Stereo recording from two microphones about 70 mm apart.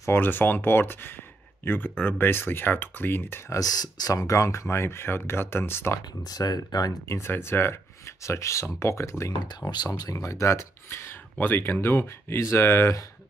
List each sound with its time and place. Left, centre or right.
0.1 s speech: left
3.4 s speech: left
6.2 s speech: left
7.2 s speech: left
8.2 s speech: left
9.3 s speech: left
10.1 s speech: left